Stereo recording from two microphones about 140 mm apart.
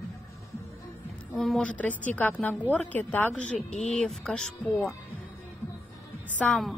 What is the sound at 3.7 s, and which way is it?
Speech, 50° left (ahead or behind).